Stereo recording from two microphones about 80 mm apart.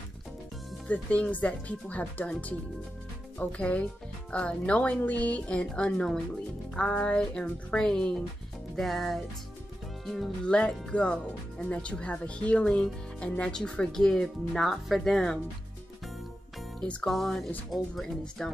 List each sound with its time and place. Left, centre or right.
0.8 s speech: centre
16.8 s speech: centre